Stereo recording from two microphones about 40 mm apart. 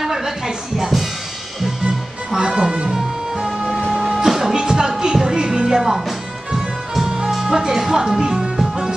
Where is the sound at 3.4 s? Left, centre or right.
Centre.